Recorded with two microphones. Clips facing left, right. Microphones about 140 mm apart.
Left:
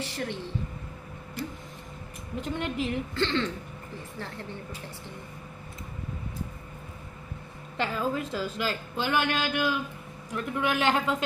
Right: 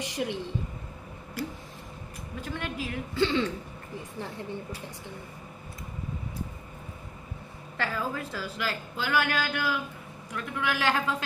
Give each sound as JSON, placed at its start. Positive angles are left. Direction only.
{"t": 0.0, "sound": "a woman's voice", "side_deg": -15}
{"t": 2.4, "sound": "a woman's voice", "side_deg": 25}
{"t": 3.2, "sound": "a woman's voice", "side_deg": -10}
{"t": 7.7, "sound": "a woman's voice", "side_deg": 20}